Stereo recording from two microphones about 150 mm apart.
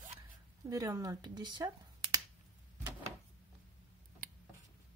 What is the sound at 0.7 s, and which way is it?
Speech, 25° right (ahead or behind).